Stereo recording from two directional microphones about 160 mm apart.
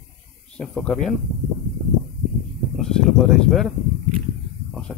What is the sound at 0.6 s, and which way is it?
Speech, 5° left (ahead or behind).